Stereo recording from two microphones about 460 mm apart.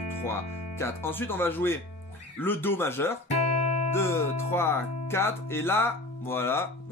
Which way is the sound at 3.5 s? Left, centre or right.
Centre.